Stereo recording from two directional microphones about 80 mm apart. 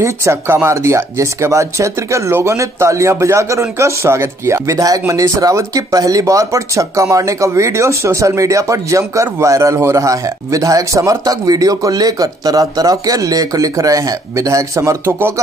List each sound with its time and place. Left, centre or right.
0.0 s speech: right
15.0 s speech: right